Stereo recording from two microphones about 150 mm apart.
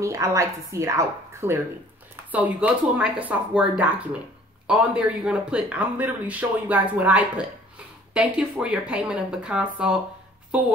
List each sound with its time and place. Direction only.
0.0 s a woman's voice: 20° right (ahead or behind)